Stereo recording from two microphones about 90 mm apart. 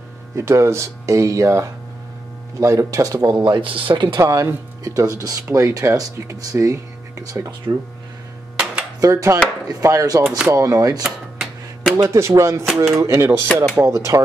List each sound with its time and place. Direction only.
0.4 s speech: 30° right (ahead or behind)
3.3 s speech: 55° right (ahead or behind)
4.2 s speech: 35° right (ahead or behind)
9.0 s speech: 35° right (ahead or behind)
10.2 s speech: 5° right (ahead or behind)
10.5 s speech: 40° right (ahead or behind)
11.1 s a sound: centre (ahead or behind)
12.1 s speech: 30° right (ahead or behind)
12.6 s speech: centre (ahead or behind)
13.0 s speech: 30° right (ahead or behind)